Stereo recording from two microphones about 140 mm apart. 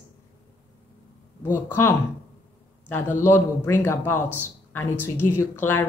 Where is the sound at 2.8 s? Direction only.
15° left (ahead or behind).